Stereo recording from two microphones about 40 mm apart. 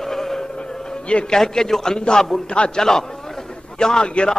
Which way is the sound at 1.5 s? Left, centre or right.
Centre.